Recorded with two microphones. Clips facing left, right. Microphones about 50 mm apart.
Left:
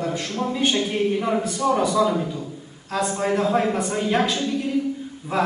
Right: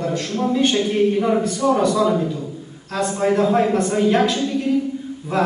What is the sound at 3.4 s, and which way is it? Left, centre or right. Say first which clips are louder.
Speech: right 4 dB; centre.